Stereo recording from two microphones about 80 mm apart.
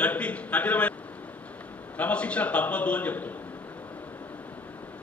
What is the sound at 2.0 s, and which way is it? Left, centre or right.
A man's voice, centre.